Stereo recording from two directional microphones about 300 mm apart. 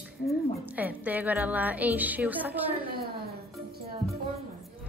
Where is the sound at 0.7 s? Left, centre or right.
Centre.